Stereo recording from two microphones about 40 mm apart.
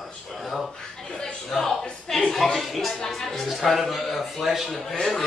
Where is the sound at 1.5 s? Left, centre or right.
Left.